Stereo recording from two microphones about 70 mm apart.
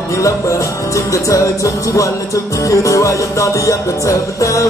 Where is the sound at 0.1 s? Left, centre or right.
Left.